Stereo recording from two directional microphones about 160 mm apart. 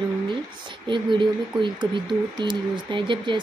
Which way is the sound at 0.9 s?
30° right (ahead or behind).